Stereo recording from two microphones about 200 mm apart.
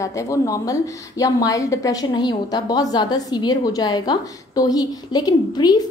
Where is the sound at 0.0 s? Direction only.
15° left (ahead or behind).